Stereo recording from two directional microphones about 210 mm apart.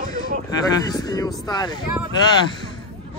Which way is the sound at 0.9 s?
15° left (ahead or behind).